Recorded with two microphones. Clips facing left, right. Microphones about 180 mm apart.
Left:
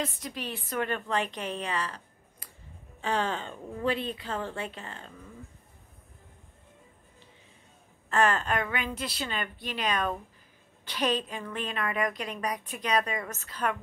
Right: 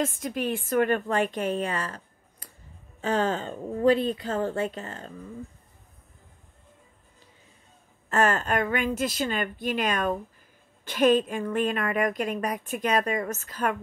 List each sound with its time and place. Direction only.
0.0 s a woman's voice: 50° right (ahead or behind)
3.0 s a woman's voice: 45° right (ahead or behind)
8.1 s a woman's voice: 45° right (ahead or behind)